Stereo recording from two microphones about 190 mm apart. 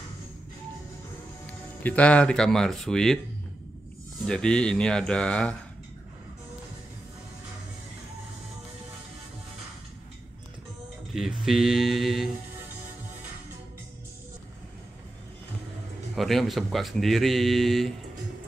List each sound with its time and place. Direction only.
1.8 s speech: 10° left (ahead or behind)
4.3 s speech: 5° left (ahead or behind)
11.4 s speech: centre (ahead or behind)
16.2 s speech: centre (ahead or behind)